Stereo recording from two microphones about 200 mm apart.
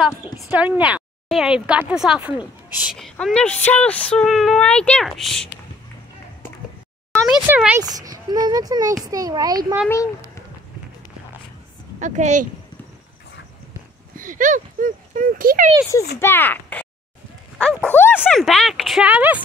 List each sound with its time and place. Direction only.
0.0 s a woman's voice: 5° right (ahead or behind)
7.4 s a child's voice: 10° right (ahead or behind)
12.0 s a woman's voice: 35° right (ahead or behind)
14.1 s speech: 40° right (ahead or behind)
16.2 s a woman's voice: 10° left (ahead or behind); by 19.4 s 5° right (ahead or behind)